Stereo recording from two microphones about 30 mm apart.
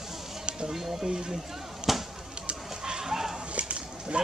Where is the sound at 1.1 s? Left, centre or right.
Right.